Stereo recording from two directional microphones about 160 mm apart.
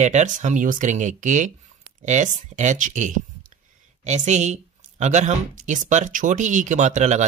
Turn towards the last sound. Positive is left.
turn(degrees=-45)  # may be behind; listen again after turning